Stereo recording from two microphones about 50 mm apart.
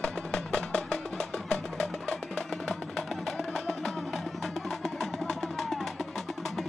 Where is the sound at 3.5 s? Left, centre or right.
Centre.